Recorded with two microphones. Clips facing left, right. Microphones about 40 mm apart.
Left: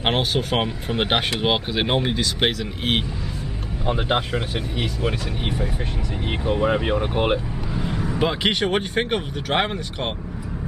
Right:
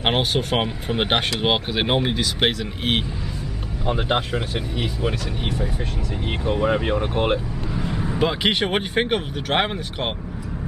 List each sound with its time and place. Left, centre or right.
0.0 s speech: centre
8.5 s speech: centre
9.1 s speech: centre